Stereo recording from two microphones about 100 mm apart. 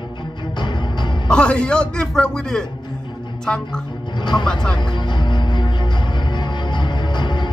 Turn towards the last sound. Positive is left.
turn(degrees=50)  # may be behind; listen again after turning